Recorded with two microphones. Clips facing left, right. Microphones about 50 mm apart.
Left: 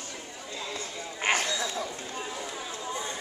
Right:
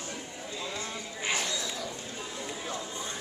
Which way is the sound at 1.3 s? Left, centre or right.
Left.